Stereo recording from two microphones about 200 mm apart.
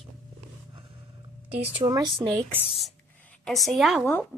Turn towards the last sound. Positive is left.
turn(degrees=0)  # may be behind; listen again after turning